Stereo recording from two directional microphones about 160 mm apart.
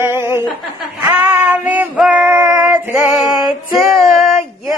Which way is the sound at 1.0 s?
10° right (ahead or behind).